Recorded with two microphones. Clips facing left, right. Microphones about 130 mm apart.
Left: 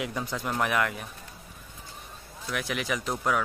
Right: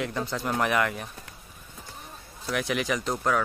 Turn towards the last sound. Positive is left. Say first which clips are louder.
# right 2 dB
turn(degrees=5)  # may be behind; listen again after turning